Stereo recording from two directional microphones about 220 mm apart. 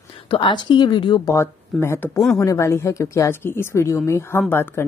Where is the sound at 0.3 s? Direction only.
20° left (ahead or behind).